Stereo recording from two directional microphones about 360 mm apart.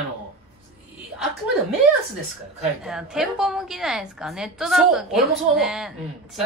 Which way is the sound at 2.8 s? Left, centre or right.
Centre.